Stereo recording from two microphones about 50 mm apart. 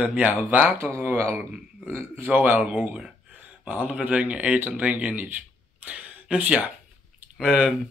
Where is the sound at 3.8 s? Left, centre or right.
Right.